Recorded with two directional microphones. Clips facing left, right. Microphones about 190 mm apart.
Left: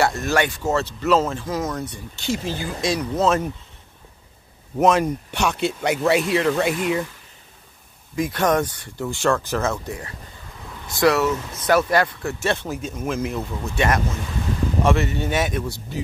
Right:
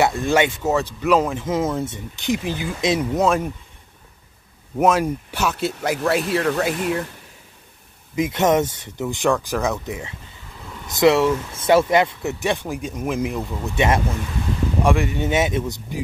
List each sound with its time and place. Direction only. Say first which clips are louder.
0.0 s speech: right 2 dB; 15° right (ahead or behind)
4.7 s speech: even; 10° right (ahead or behind)
8.2 s speech: right 2 dB; 20° right (ahead or behind)
14.8 s speech: right 1 dB; 10° right (ahead or behind)